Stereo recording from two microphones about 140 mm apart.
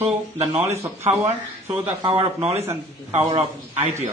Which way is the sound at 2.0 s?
40° right (ahead or behind).